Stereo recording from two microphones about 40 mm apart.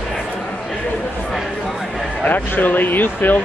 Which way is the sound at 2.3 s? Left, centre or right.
Left.